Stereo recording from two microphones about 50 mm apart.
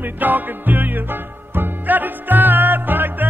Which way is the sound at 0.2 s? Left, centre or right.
Right.